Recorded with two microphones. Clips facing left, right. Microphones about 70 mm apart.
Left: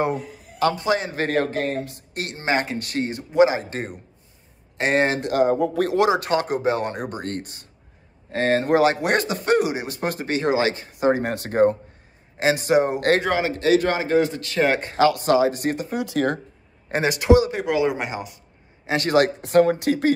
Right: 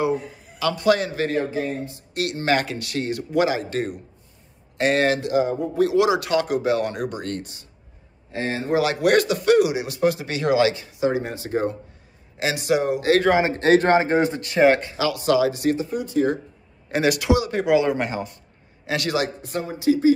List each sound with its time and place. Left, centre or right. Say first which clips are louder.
0.7 s speech: right 3 dB; left
1.1 s a man's voice: left 1 dB; left
1.4 s speech: left 2 dB; left
2.1 s speech: right 2 dB; left
5.2 s a man's voice: left 2 dB; left
8.7 s a man's voice: right 4 dB; left
12.4 s a man's voice: left 3 dB; left
13.4 s a man's voice: right 2 dB; right
14.8 s speech: left 6 dB; left
15.9 s speech: right 1 dB; left
16.9 s a man's voice: left 3 dB; left
17.5 s speech: right 3 dB; centre
18.9 s a man's voice: left 2 dB; left
19.1 s speech: left 8 dB; left